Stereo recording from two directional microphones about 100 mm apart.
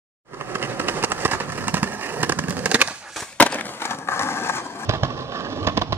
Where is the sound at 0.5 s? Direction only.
20° right (ahead or behind).